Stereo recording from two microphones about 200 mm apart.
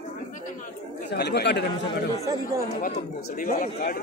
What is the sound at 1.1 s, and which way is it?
Speech, 55° left (ahead or behind).